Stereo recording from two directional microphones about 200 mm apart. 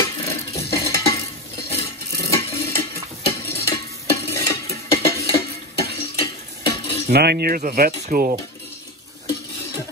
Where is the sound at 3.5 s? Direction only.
15° left (ahead or behind).